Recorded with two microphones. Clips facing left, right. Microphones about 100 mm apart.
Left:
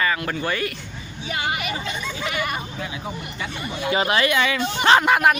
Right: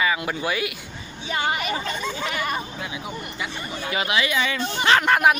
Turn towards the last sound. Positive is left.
turn(degrees=0)  # may be behind; listen again after turning